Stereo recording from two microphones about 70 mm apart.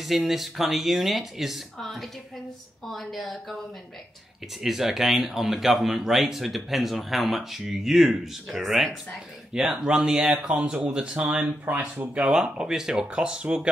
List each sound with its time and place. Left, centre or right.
0.0 s speech: centre
12.3 s speech: centre